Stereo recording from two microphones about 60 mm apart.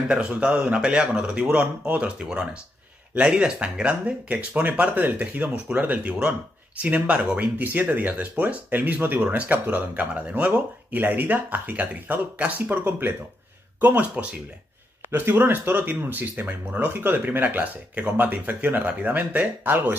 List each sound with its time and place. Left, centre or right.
0.1 s speech: centre
3.2 s speech: centre
15.0 s speech: right